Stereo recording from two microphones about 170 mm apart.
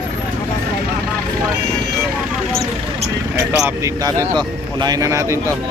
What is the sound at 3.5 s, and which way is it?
Speech, 10° right (ahead or behind).